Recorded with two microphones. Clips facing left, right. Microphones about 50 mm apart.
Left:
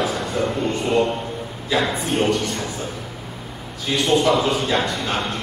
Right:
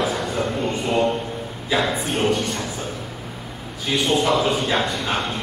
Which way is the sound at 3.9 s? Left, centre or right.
Centre.